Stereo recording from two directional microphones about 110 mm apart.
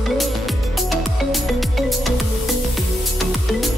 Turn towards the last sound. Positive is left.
turn(degrees=0)  # may be behind; listen again after turning